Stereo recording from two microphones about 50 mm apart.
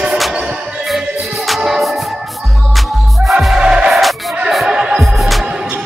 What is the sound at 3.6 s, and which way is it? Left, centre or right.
Music, centre.